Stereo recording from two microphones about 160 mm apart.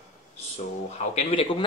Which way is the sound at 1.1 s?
35° left (ahead or behind).